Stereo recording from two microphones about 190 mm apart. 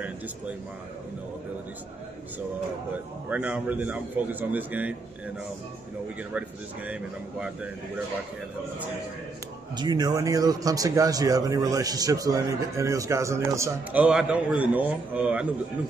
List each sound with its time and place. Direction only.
3.3 s speech: 5° right (ahead or behind)
6.3 s speech: 5° right (ahead or behind)
9.8 s speech: 20° right (ahead or behind)